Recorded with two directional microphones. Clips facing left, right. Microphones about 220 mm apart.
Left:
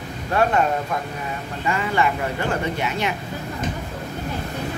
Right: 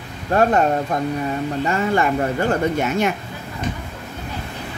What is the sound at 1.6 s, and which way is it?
Speech, 45° right (ahead or behind).